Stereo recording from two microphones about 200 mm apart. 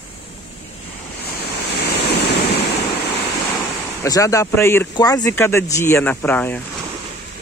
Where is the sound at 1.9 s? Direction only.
55° left (ahead or behind).